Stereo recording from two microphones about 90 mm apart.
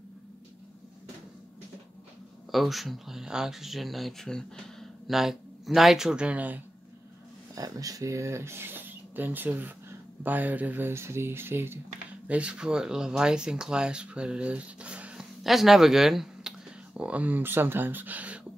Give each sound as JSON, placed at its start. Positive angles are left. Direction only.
{"t": 2.5, "sound": "speech", "side_deg": 0}
{"t": 7.5, "sound": "speech", "side_deg": -40}
{"t": 12.3, "sound": "speech", "side_deg": -15}
{"t": 15.4, "sound": "speech", "side_deg": -5}